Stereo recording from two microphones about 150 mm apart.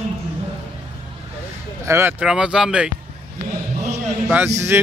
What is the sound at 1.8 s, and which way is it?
Speech, 15° right (ahead or behind).